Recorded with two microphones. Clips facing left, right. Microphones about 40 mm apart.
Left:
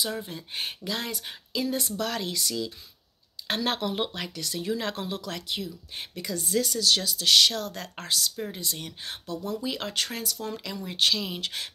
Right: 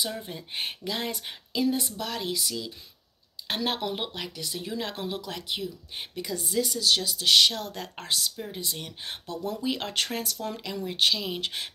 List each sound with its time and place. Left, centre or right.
0.2 s speech: right
2.0 s speech: centre
9.3 s speech: right
10.4 s speech: centre